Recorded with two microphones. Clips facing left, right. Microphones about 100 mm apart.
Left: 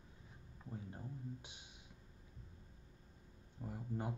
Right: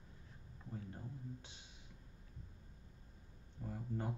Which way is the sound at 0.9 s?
15° left (ahead or behind).